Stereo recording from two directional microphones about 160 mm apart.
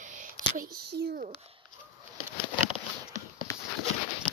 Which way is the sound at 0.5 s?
65° right (ahead or behind).